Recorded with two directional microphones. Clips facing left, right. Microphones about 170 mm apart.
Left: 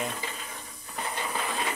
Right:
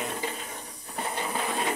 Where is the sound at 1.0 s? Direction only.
20° right (ahead or behind).